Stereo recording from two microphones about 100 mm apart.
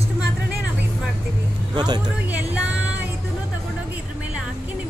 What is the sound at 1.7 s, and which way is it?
Speech, 45° right (ahead or behind).